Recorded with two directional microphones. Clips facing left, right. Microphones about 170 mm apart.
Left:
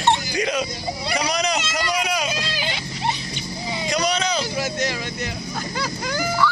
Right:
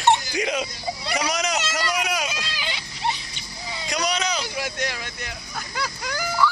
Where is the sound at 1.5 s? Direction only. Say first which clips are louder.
Left 2 dB; 5° right (ahead or behind).